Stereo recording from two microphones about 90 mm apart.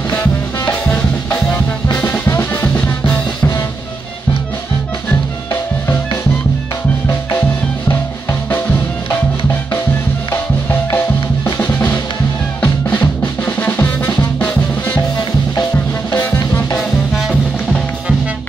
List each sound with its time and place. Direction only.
0.1 s music: 25° left (ahead or behind)
7.9 s music: 25° left (ahead or behind)
12.9 s music: 20° left (ahead or behind)
16.2 s music: 30° left (ahead or behind)
16.7 s music: 10° left (ahead or behind)